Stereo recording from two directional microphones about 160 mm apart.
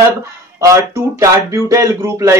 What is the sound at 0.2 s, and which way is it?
Speech, 20° right (ahead or behind).